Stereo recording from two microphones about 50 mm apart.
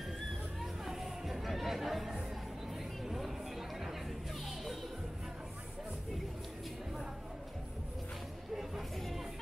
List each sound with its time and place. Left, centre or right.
0.6 s chatter: centre
3.1 s a sound: centre
8.5 s music: centre